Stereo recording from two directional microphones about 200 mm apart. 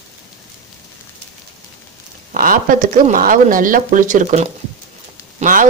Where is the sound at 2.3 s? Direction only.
45° right (ahead or behind).